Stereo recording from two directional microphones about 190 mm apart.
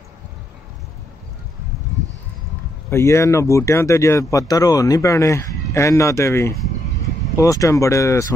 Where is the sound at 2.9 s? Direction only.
15° left (ahead or behind).